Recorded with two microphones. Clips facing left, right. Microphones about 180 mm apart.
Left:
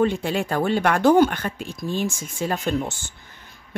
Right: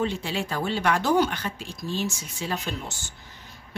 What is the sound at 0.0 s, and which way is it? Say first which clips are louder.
Speech: left 6 dB; 55° left (ahead or behind).